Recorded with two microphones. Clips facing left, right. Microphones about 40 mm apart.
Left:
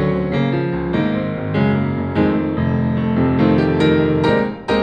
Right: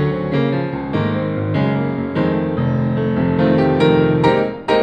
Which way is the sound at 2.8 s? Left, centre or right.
Left.